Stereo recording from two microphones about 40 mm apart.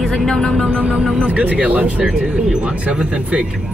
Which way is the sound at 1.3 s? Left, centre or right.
Right.